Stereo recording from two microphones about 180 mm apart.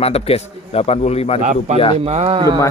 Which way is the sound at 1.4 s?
45° right (ahead or behind).